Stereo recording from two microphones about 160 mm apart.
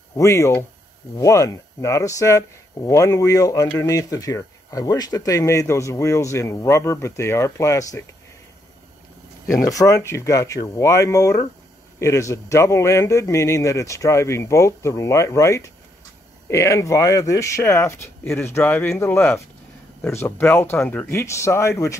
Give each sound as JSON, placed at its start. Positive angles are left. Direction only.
{"t": 0.1, "sound": "speech", "side_deg": 20}
{"t": 9.7, "sound": "speech", "side_deg": 20}